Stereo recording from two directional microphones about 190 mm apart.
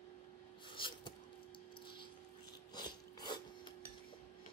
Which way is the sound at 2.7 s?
20° left (ahead or behind).